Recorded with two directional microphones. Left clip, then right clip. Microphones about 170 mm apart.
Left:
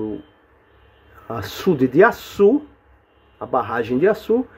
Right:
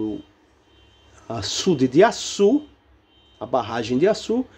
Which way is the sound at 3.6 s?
25° right (ahead or behind).